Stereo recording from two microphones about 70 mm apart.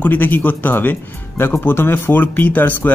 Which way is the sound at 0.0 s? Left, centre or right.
Left.